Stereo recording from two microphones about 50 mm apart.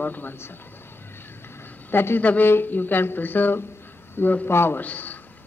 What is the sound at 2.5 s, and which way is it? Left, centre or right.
Speech, left.